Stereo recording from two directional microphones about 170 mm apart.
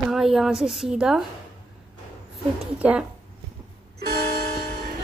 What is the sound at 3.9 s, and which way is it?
Music, 70° right (ahead or behind).